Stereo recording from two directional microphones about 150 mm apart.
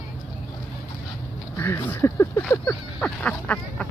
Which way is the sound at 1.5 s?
15° left (ahead or behind).